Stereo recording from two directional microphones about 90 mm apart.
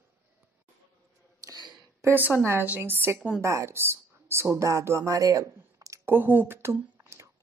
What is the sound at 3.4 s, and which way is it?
Speech, 30° right (ahead or behind).